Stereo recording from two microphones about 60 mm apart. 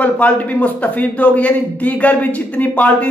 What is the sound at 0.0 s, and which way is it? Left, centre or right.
Speech, left.